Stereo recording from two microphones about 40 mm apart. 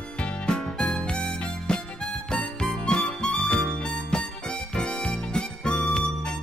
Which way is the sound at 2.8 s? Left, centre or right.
Left.